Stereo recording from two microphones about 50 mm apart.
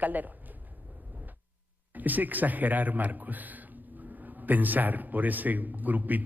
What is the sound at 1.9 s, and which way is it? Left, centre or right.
A man's voice, right.